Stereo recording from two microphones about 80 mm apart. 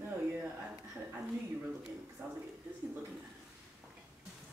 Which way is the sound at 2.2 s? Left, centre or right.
Right.